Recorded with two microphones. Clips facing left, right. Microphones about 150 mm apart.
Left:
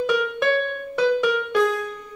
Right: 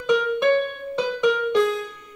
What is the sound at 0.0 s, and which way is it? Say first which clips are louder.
Music: right 2 dB; 20° right (ahead or behind).